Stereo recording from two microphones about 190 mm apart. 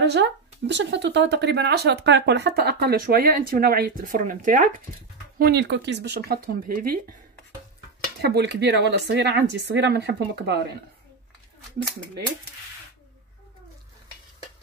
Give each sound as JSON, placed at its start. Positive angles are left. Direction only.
{"t": 0.0, "sound": "speech", "side_deg": -65}
{"t": 5.4, "sound": "speech", "side_deg": -60}
{"t": 8.2, "sound": "speech", "side_deg": -60}